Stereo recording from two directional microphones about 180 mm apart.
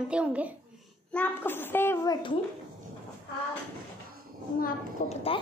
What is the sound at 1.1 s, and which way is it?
A child's voice, 10° left (ahead or behind).